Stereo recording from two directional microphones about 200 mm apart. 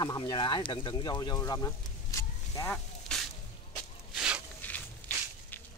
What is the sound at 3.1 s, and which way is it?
Whip, 5° left (ahead or behind).